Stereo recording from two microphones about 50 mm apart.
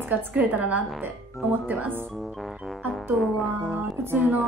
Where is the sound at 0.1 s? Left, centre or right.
Right.